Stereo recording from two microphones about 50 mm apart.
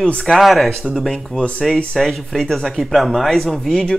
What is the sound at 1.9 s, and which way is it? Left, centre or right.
Speech, centre.